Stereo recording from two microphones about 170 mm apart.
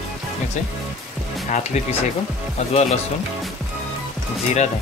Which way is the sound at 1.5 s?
40° left (ahead or behind).